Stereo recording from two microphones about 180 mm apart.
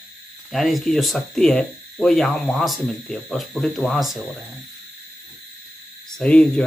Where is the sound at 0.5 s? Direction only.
Centre (ahead or behind).